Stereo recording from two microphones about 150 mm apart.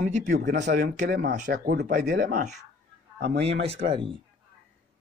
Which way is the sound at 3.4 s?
40° right (ahead or behind).